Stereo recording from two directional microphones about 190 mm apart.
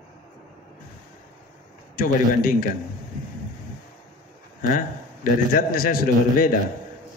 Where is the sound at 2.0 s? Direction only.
50° left (ahead or behind).